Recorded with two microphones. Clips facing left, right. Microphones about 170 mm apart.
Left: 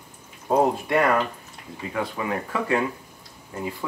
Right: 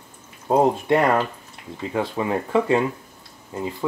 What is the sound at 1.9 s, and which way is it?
Speech, 30° right (ahead or behind).